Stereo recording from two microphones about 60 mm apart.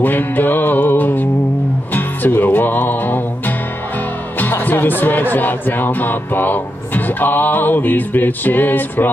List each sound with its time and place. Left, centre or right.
0.0 s music: left